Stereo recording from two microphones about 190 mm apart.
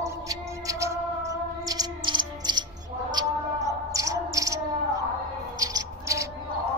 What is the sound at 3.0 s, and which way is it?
Cricket, 20° right (ahead or behind).